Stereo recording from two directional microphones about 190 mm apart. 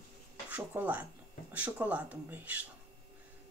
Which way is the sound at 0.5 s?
10° right (ahead or behind).